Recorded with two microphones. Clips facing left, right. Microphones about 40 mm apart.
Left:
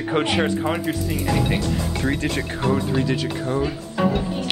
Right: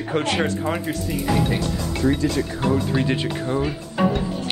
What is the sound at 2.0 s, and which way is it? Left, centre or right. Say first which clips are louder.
Speech: right 4 dB; left.